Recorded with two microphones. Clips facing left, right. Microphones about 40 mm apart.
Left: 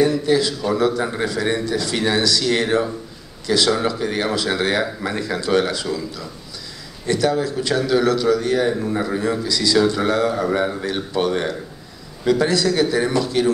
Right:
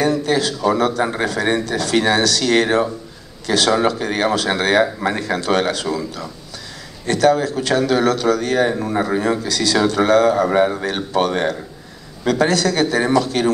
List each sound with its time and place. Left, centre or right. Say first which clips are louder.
0.0 s a man's voice: left 1 dB; right
7.1 s speech: right 4 dB; right